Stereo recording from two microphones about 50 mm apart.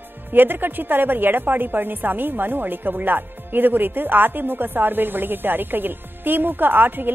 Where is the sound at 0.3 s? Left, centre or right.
Right.